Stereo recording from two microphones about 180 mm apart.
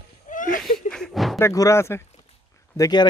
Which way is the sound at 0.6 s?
Centre (ahead or behind).